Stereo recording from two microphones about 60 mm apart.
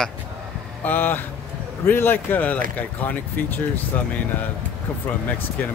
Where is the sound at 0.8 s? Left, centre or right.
Left.